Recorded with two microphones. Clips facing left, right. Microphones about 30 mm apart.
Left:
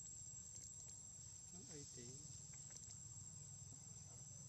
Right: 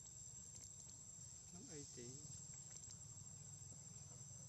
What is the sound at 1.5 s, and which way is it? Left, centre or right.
Cricket, centre.